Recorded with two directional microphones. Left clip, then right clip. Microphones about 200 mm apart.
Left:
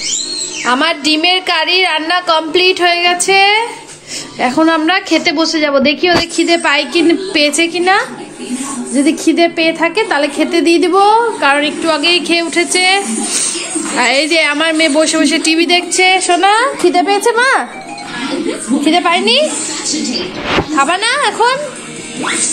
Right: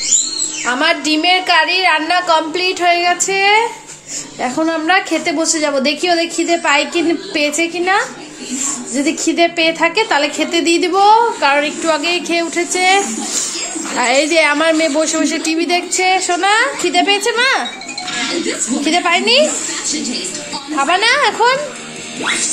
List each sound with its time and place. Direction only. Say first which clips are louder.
0.7 s a woman's voice: left 3 dB; centre (ahead or behind)
18.9 s a woman's voice: left 2 dB; centre (ahead or behind)
20.7 s speech: right 2 dB; 5° right (ahead or behind)